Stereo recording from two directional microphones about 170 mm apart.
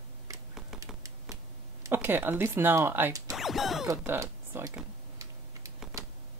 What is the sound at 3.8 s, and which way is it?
Speech, 15° right (ahead or behind).